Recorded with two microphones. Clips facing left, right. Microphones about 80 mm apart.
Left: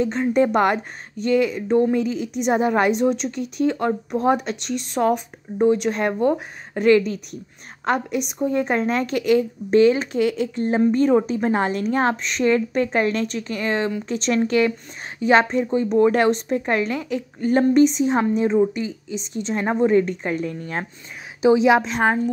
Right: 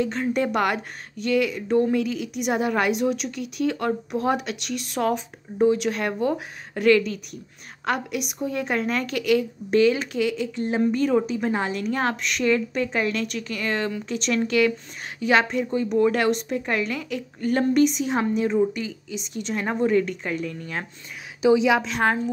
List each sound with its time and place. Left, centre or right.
0.0 s a woman's voice: left